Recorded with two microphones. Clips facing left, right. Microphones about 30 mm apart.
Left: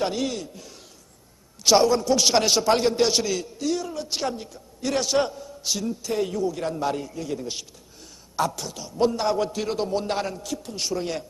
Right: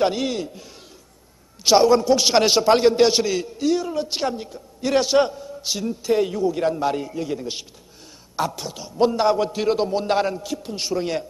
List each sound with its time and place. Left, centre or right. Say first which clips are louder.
0.0 s a man's voice: right 5 dB; centre